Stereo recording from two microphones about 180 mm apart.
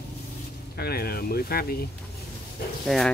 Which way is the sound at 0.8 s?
60° left (ahead or behind).